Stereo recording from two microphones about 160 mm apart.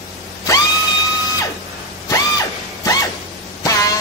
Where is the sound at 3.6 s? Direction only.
20° left (ahead or behind).